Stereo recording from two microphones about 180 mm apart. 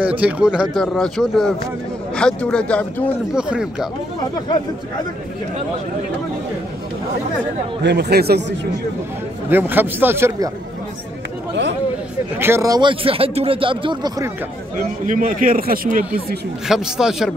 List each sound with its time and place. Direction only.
0.0 s speech: 10° right (ahead or behind)
3.3 s speech: 5° right (ahead or behind)
7.8 s speech: 65° right (ahead or behind)
9.5 s a man's voice: 10° right (ahead or behind)
12.4 s speech: 15° right (ahead or behind)
14.8 s a man's voice: 50° right (ahead or behind)
16.6 s speech: 5° right (ahead or behind)